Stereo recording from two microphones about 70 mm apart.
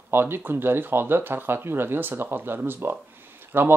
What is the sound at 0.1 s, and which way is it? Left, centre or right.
Speech, right.